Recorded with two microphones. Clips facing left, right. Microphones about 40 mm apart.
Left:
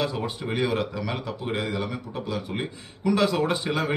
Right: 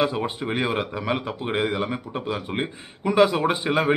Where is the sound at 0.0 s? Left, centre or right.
Right.